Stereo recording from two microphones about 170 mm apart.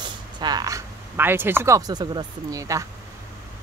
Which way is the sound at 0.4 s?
25° right (ahead or behind).